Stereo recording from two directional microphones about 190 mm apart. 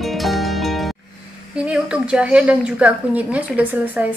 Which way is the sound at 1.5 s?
5° right (ahead or behind).